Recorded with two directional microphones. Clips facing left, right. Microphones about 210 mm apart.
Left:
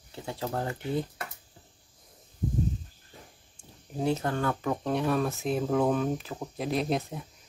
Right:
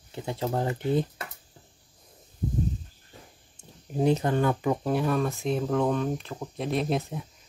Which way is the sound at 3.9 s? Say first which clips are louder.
Right 5 dB; 20° right (ahead or behind).